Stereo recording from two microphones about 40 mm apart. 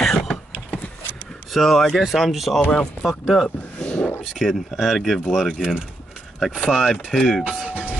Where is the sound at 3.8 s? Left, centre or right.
Left.